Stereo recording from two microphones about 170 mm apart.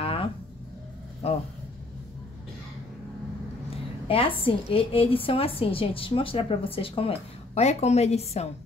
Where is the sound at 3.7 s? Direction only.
30° left (ahead or behind).